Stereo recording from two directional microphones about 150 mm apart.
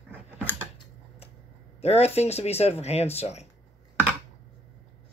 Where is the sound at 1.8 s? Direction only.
45° left (ahead or behind).